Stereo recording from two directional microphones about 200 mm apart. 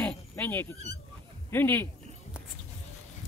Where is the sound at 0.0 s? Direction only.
10° left (ahead or behind).